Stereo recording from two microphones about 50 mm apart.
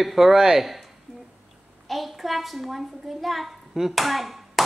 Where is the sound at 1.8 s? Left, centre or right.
Centre.